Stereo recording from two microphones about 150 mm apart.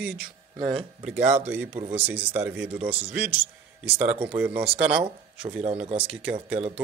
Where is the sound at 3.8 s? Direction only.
45° right (ahead or behind).